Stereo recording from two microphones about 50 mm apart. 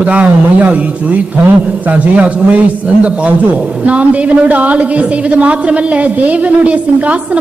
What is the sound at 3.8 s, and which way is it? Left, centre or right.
A woman's voice, right.